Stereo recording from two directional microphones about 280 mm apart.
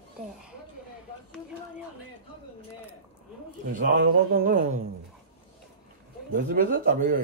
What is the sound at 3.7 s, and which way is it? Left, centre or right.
Speech, right.